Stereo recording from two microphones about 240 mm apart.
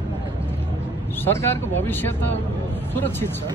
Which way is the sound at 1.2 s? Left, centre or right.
Centre.